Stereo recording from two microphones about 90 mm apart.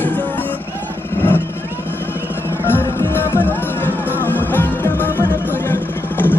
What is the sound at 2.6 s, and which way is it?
Music, 25° left (ahead or behind).